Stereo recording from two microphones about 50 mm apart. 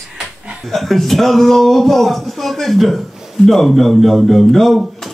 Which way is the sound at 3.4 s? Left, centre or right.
Centre.